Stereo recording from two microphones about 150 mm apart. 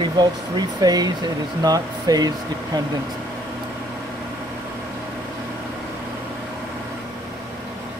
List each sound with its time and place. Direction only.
0.0 s speech: 25° right (ahead or behind)